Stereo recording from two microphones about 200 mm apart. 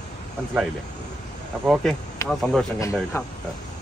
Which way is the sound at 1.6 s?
Centre (ahead or behind).